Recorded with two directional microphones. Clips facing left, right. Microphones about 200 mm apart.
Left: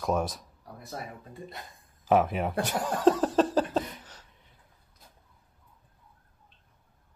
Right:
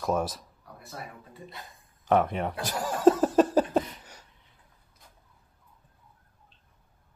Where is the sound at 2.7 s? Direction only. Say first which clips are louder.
Right 3 dB; 5° right (ahead or behind).